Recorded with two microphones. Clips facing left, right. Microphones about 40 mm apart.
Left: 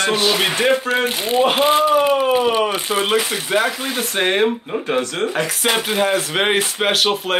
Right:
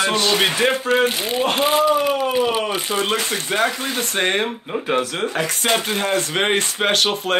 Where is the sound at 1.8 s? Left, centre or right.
Centre.